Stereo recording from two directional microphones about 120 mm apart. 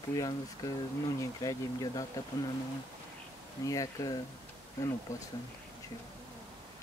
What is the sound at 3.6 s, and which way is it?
Speech, 30° left (ahead or behind).